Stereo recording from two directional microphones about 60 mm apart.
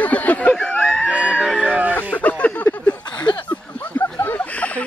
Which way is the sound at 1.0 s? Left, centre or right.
Centre.